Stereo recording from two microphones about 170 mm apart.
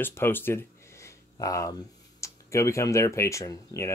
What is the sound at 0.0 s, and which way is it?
Speech, 15° left (ahead or behind).